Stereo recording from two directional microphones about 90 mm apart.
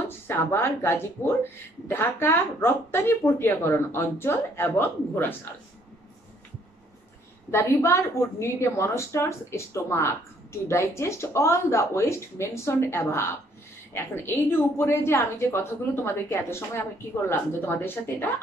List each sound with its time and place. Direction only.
0.3 s speech: 25° left (ahead or behind)
7.5 s speech: 30° left (ahead or behind)